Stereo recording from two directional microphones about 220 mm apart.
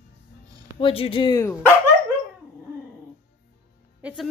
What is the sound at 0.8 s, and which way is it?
Speech, 25° left (ahead or behind).